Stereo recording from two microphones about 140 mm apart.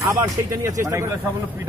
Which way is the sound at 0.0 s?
20° right (ahead or behind).